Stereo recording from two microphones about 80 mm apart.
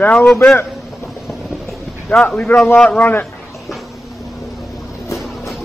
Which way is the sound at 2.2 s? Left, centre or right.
Centre.